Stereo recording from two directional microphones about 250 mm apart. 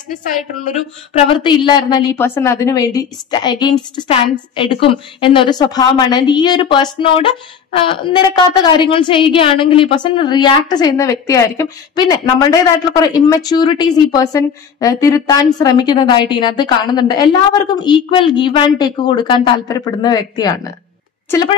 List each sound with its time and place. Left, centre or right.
1.1 s a woman's voice: centre